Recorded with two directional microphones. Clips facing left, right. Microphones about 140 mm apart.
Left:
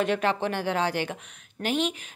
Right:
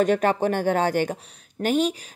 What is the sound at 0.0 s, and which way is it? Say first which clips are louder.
A woman's voice: right 5 dB; 45° right (ahead or behind).